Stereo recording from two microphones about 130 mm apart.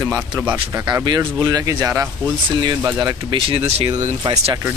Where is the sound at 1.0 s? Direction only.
30° right (ahead or behind).